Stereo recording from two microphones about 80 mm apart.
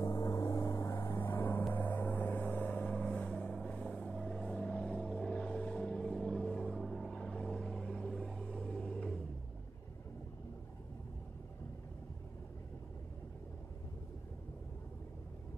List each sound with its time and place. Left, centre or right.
0.0 s vehicle: left
1.0 s vehicle: left; by 9.2 s centre